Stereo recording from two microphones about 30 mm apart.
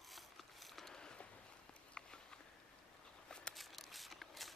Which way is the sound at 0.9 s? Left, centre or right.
Left.